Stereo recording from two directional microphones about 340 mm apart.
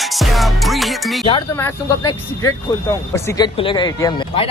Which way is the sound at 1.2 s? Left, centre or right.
Centre.